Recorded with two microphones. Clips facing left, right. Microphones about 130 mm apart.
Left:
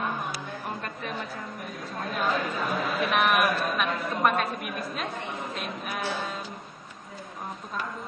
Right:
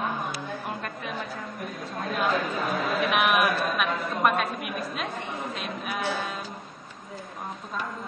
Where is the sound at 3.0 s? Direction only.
5° right (ahead or behind).